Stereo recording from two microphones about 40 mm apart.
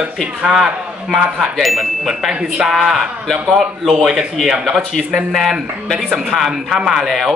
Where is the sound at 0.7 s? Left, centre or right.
Centre.